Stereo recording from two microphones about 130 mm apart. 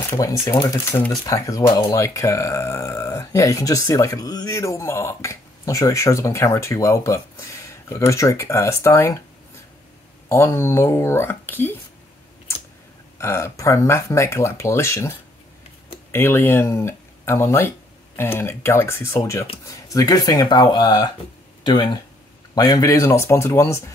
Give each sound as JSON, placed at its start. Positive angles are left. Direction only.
{"t": 0.1, "sound": "speech", "side_deg": 25}
{"t": 10.2, "sound": "speech", "side_deg": 20}
{"t": 13.2, "sound": "speech", "side_deg": 20}